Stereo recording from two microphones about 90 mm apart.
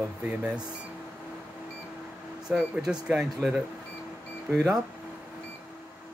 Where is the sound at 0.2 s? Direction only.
15° right (ahead or behind).